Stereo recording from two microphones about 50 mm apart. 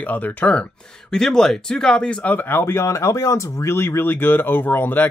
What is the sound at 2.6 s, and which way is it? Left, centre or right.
Speech, left.